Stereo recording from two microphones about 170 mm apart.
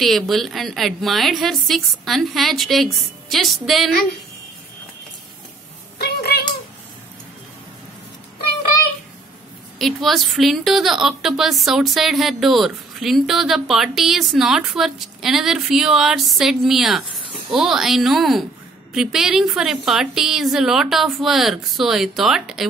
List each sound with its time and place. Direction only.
0.0 s a woman's voice: centre (ahead or behind)
5.9 s a sound: 70° left (ahead or behind)
9.8 s a woman's voice: centre (ahead or behind)